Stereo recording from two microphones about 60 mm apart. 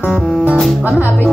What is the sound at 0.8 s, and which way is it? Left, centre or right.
Speech, right.